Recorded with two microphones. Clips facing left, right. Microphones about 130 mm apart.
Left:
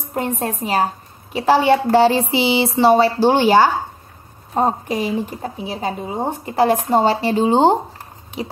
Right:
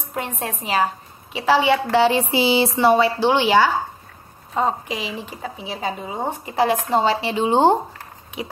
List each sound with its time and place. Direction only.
0.1 s a woman's voice: 45° left (ahead or behind)